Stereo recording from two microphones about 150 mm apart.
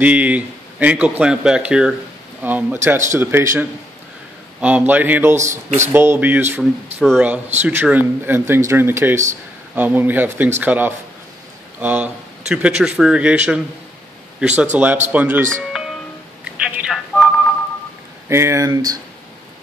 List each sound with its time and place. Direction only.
0.0 s speech: 10° right (ahead or behind)
5.4 s speech: 55° right (ahead or behind)
5.9 s speech: 15° right (ahead or behind)
7.0 s speech: centre (ahead or behind)
15.7 s music: 5° right (ahead or behind)
16.6 s speech: 5° right (ahead or behind)
18.3 s speech: 20° right (ahead or behind)